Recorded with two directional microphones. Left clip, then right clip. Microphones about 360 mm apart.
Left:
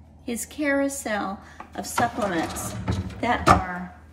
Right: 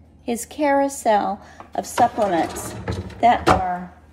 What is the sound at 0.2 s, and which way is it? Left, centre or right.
A woman's voice, centre.